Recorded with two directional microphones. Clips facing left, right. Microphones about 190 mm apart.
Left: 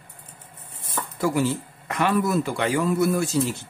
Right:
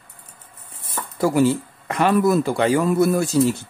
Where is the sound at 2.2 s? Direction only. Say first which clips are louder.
Right 5 dB; 35° right (ahead or behind).